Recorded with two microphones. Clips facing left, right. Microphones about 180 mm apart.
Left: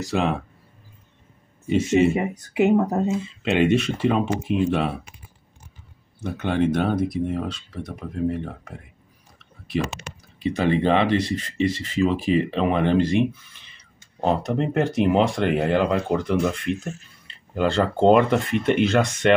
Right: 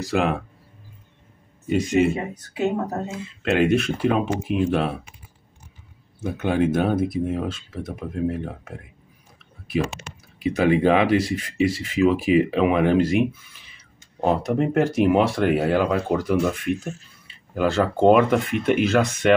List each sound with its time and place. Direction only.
0.0 s speech: centre (ahead or behind)
2.1 s speech: 15° left (ahead or behind)
3.4 s speech: centre (ahead or behind)
6.2 s speech: 5° right (ahead or behind)
10.4 s speech: 5° right (ahead or behind)